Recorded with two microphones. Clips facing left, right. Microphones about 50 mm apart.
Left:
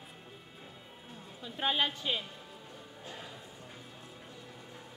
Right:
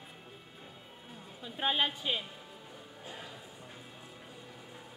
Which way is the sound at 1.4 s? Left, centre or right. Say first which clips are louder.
Even; centre.